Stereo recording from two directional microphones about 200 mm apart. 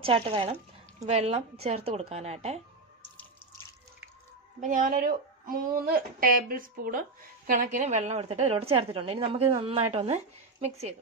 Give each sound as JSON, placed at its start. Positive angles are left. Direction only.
{"t": 0.0, "sound": "a woman's voice", "side_deg": -25}
{"t": 4.6, "sound": "a woman's voice", "side_deg": -40}